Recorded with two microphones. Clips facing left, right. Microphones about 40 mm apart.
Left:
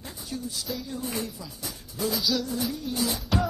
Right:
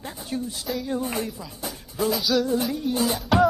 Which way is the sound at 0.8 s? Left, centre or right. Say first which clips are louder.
Right 8 dB; right.